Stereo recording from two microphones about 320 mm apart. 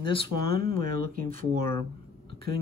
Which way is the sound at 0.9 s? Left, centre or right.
Right.